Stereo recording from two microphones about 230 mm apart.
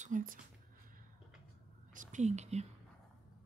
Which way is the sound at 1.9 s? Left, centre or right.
Right.